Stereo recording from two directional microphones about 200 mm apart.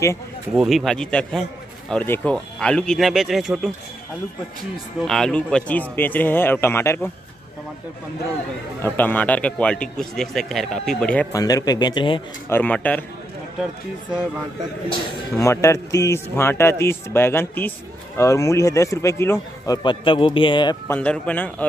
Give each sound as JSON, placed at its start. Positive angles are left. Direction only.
{"t": 0.6, "sound": "a man's voice", "side_deg": 0}
{"t": 5.0, "sound": "speech", "side_deg": 5}
{"t": 8.8, "sound": "a man's voice", "side_deg": 10}
{"t": 11.3, "sound": "speech", "side_deg": 15}
{"t": 12.4, "sound": "speech", "side_deg": 10}
{"t": 15.3, "sound": "speech", "side_deg": 15}
{"t": 20.9, "sound": "speech", "side_deg": 5}